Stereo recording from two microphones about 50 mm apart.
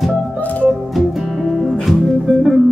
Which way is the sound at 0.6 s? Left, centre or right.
Centre.